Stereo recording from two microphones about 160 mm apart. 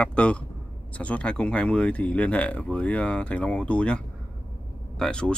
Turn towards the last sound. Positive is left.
turn(degrees=5)  # may be behind; listen again after turning